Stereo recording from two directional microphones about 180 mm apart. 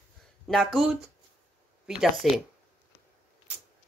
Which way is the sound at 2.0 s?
Centre (ahead or behind).